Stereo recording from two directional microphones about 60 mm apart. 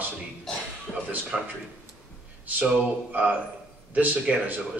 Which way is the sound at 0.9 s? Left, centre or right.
Centre.